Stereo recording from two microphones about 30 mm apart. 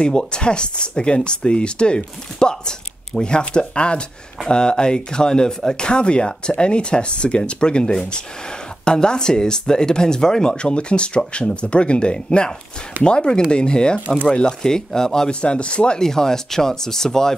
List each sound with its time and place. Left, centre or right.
0.0 s speech: left
15.4 s speech: left
16.0 s speech: centre